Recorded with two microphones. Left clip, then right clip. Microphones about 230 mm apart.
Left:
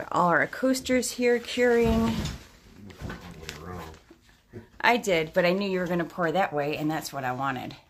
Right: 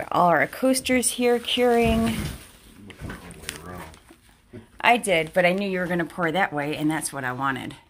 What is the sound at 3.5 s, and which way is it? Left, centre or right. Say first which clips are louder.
Dog: right 5 dB; right.